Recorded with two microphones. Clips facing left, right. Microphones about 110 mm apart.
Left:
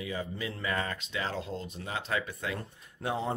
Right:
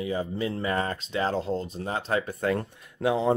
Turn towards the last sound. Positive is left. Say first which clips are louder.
# right 8 dB
turn(degrees=-90)